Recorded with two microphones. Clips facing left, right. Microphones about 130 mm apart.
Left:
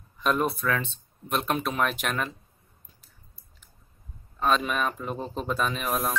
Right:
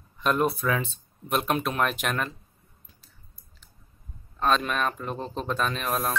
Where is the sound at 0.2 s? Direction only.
Centre (ahead or behind).